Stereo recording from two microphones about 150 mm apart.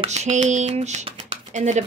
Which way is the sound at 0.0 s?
50° right (ahead or behind).